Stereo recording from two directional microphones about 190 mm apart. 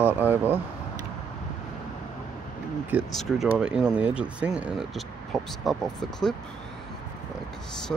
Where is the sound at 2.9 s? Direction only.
5° right (ahead or behind).